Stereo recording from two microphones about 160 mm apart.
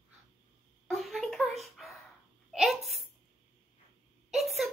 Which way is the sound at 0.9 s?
Centre (ahead or behind).